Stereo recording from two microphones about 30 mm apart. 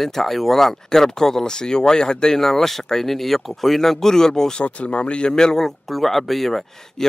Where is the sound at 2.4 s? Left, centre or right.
Centre.